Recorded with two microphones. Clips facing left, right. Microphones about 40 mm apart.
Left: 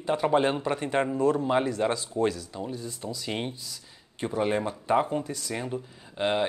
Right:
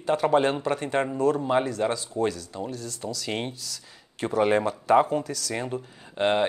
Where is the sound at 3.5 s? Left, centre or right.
Right.